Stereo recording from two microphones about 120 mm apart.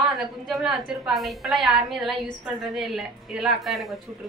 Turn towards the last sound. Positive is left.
turn(degrees=0)  # may be behind; listen again after turning